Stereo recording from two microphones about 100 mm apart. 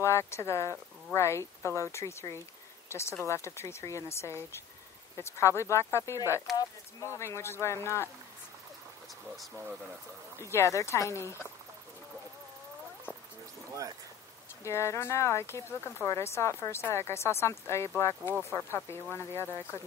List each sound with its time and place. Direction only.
0.0 s speech: 25° left (ahead or behind)
10.4 s speech: 30° left (ahead or behind)
14.6 s speech: 30° left (ahead or behind)